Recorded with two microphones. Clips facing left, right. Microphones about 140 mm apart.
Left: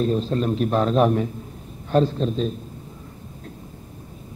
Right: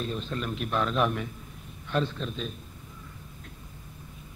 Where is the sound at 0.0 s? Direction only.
35° left (ahead or behind).